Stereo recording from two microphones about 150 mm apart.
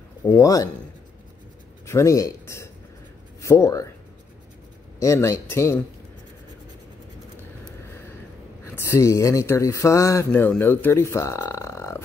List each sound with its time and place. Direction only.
0.2 s speech: 20° left (ahead or behind)
1.9 s speech: 20° left (ahead or behind)
5.0 s speech: 20° left (ahead or behind)
8.6 s speech: 15° left (ahead or behind)